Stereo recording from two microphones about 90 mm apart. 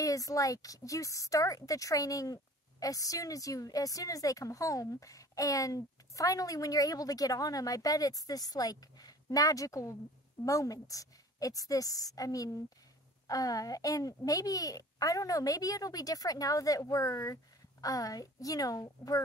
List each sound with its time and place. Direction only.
0.0 s speech: 40° left (ahead or behind)